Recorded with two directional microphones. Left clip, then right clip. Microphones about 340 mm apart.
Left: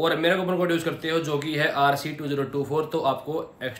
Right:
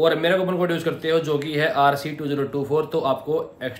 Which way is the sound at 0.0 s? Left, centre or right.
Centre.